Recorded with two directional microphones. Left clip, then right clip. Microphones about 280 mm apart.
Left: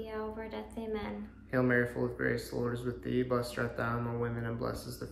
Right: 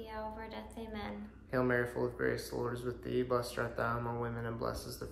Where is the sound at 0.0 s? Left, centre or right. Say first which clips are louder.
Left 3 dB; centre.